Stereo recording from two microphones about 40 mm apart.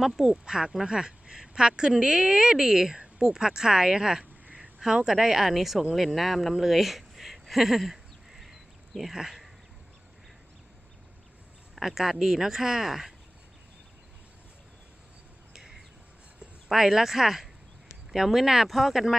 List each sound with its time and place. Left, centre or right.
0.0 s a woman's voice: centre
0.3 s a woman's voice: centre
6.5 s a sound: centre
9.1 s a woman's voice: centre
11.7 s a woman's voice: centre
15.5 s bird: centre
16.6 s a woman's voice: centre